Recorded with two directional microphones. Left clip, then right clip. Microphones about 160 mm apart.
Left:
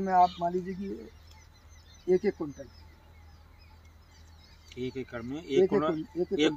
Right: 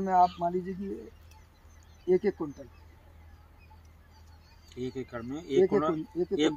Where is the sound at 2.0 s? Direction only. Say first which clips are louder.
Even; centre (ahead or behind).